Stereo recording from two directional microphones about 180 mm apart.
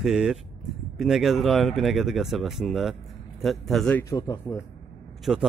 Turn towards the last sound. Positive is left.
turn(degrees=0)  # may be behind; listen again after turning